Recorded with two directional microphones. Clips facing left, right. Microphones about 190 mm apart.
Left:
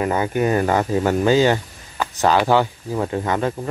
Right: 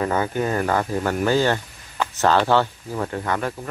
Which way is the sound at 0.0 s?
15° left (ahead or behind).